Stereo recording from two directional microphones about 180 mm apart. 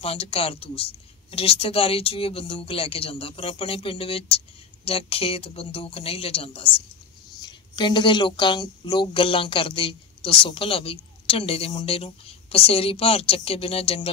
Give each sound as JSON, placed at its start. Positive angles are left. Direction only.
{"t": 0.0, "sound": "a woman's voice", "side_deg": 30}